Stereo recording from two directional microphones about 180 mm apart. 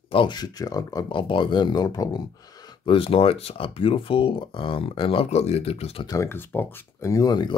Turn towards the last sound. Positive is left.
turn(degrees=20)  # may be behind; listen again after turning